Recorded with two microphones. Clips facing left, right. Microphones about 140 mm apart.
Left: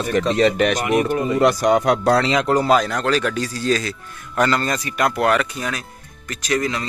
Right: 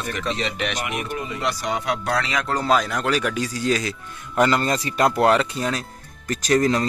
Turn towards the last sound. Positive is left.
turn(degrees=-40)  # may be behind; listen again after turning